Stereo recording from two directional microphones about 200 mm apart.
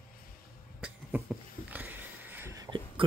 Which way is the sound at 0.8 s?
5° right (ahead or behind).